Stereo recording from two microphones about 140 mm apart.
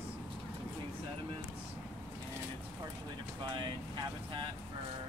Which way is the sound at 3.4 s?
35° right (ahead or behind).